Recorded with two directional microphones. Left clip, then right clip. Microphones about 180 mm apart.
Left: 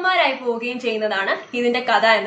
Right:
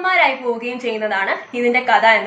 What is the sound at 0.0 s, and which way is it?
Speech, 25° left (ahead or behind).